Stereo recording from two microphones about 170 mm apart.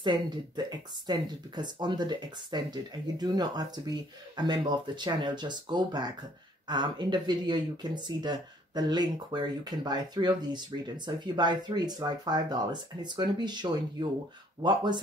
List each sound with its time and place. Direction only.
0.0 s speech: 25° right (ahead or behind)